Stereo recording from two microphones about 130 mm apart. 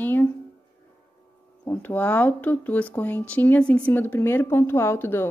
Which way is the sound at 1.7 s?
15° left (ahead or behind).